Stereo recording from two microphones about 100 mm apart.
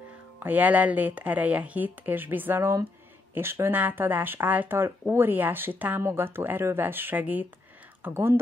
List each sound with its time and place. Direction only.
0.4 s speech: 15° right (ahead or behind)